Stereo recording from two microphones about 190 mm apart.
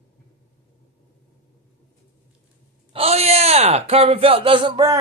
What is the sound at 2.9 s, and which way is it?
Speech, 30° right (ahead or behind).